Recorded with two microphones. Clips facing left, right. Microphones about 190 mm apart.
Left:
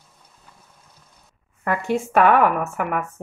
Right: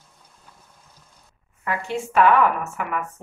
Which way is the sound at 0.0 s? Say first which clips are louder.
Even; 5° left (ahead or behind).